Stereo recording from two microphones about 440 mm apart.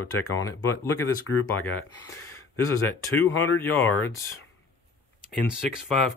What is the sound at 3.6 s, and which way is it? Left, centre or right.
Speech, centre.